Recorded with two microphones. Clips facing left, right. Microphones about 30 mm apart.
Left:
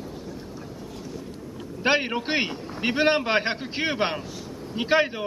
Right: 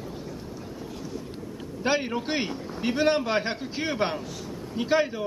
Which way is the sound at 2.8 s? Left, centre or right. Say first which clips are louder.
Left 2 dB; left.